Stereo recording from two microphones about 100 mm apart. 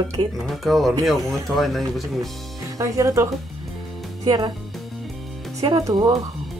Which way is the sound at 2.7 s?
35° right (ahead or behind).